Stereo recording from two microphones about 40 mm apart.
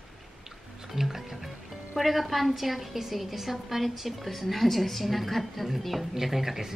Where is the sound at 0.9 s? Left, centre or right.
Centre.